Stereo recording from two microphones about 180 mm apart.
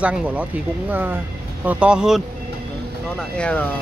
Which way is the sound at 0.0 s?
5° right (ahead or behind).